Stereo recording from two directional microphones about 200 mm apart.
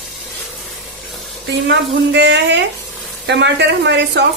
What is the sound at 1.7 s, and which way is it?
A woman's voice, 60° right (ahead or behind).